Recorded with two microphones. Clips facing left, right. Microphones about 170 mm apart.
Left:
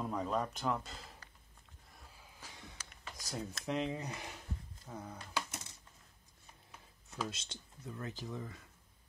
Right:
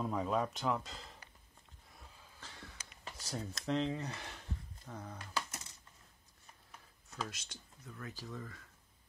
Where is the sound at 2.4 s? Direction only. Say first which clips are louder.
Right 1 dB; 15° left (ahead or behind).